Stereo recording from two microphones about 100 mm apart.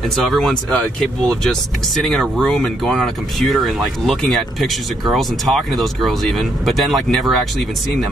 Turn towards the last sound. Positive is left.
turn(degrees=0)  # may be behind; listen again after turning